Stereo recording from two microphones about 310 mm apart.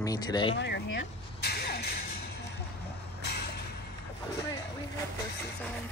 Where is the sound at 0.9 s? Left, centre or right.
Left.